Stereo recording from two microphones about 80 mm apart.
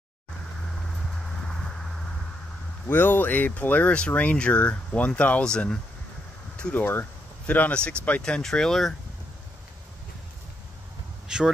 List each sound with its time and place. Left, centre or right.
1.2 s a sound: centre
2.9 s speech: left; by 5.8 s centre
6.5 s a sound: centre
6.8 s speech: left
8.2 s speech: centre
11.2 s speech: centre